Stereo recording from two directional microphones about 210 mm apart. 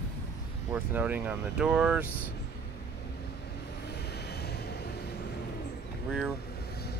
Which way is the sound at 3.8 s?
50° left (ahead or behind).